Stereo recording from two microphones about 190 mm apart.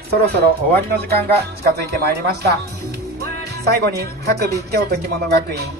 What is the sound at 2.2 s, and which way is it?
Speech, 55° right (ahead or behind).